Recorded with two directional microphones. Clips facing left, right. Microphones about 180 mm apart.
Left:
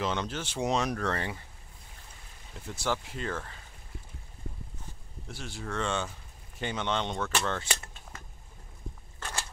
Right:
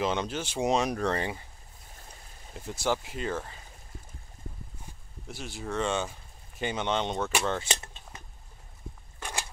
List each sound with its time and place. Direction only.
0.0 s speech: 15° right (ahead or behind)
2.7 s speech: 10° right (ahead or behind)
5.3 s speech: 15° right (ahead or behind)
9.2 s a sound: 15° right (ahead or behind)